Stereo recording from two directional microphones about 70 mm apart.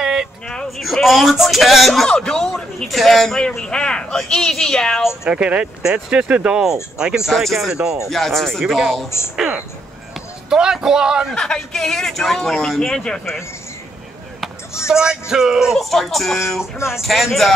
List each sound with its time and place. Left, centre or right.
0.0 s vehicle: centre
0.7 s a man's voice: centre
5.2 s speech: centre
8.1 s music: centre
10.5 s speech: centre
11.3 s speech: centre
14.9 s music: centre
16.7 s speech: left
17.0 s music: centre